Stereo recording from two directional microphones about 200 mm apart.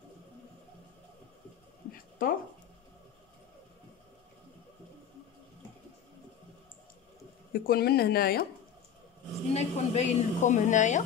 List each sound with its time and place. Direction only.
1.9 s a sound: 45° left (ahead or behind)
7.5 s speech: 50° left (ahead or behind)
9.5 s a woman's voice: 35° left (ahead or behind)